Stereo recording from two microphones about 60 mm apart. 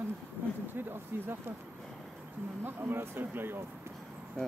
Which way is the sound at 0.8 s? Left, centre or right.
Right.